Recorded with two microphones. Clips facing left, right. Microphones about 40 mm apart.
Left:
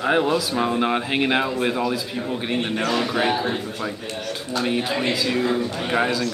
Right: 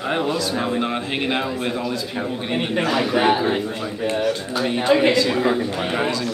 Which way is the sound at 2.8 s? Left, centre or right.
Centre.